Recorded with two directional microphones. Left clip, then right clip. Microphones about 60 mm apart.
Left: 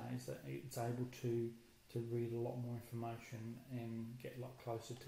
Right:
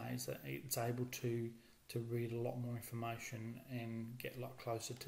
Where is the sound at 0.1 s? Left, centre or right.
Right.